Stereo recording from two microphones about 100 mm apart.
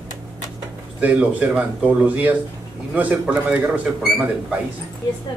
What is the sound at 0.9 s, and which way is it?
A man's voice, 15° right (ahead or behind).